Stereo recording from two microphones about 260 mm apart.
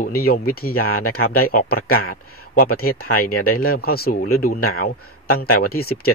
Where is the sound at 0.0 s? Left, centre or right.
Left.